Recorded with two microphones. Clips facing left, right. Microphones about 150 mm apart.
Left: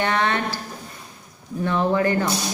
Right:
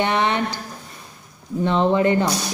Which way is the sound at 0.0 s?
20° right (ahead or behind).